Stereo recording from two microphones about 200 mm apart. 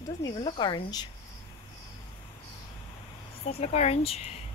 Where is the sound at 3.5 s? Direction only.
30° left (ahead or behind).